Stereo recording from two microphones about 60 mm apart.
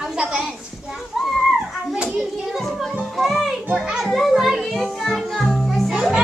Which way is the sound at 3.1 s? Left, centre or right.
Centre.